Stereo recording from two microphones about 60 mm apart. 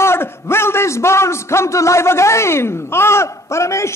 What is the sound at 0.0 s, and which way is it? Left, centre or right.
A man's voice, left.